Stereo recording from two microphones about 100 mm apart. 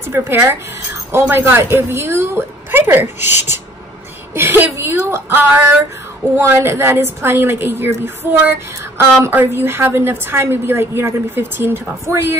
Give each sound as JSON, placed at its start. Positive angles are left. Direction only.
{"t": 0.1, "sound": "a woman's voice", "side_deg": -25}